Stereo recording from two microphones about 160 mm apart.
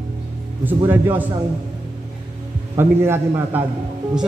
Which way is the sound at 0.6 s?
15° right (ahead or behind).